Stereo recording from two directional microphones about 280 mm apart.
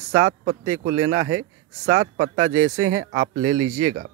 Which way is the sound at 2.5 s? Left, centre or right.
Right.